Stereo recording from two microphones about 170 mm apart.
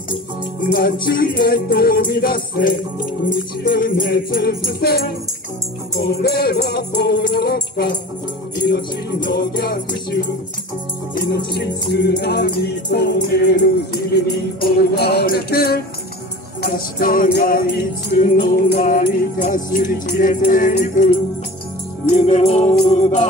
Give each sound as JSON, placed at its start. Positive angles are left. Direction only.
{"t": 1.0, "sound": "music", "side_deg": 60}
{"t": 22.1, "sound": "music", "side_deg": 45}